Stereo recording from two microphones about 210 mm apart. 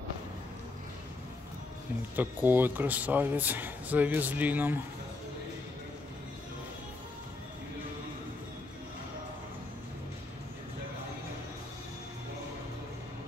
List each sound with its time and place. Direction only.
2.1 s speech: 10° right (ahead or behind)